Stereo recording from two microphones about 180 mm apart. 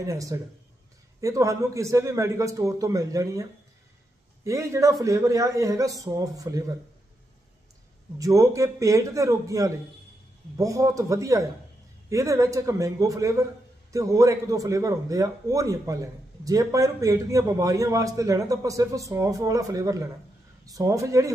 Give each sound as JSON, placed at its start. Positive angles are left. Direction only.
{"t": 0.0, "sound": "a man's voice", "side_deg": -20}
{"t": 4.5, "sound": "speech", "side_deg": -15}
{"t": 8.2, "sound": "a man's voice", "side_deg": -20}